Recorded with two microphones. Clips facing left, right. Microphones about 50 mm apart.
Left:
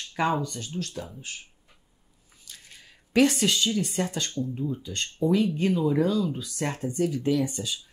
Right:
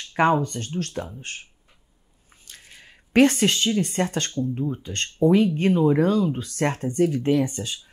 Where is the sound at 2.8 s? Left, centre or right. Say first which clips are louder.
Right 4 dB; right.